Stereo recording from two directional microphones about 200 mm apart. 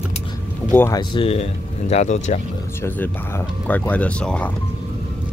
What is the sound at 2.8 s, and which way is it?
Speech, 10° left (ahead or behind).